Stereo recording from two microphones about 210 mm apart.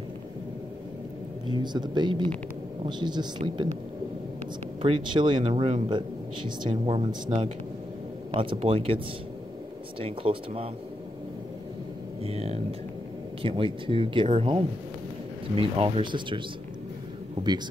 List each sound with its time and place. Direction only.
1.5 s speech: 20° right (ahead or behind)
4.8 s speech: 25° right (ahead or behind)
12.2 s speech: 30° right (ahead or behind)